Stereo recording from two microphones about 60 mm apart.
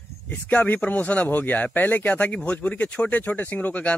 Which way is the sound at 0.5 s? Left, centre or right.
Left.